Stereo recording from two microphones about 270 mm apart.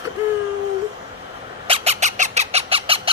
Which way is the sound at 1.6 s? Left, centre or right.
Right.